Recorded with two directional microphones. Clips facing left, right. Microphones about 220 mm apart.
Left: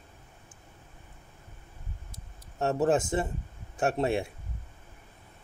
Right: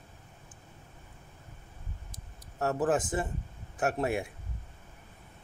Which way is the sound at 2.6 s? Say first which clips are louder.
Left 3 dB; 25° left (ahead or behind).